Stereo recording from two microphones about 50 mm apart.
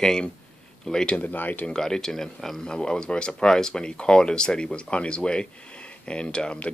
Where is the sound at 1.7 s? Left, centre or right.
Centre.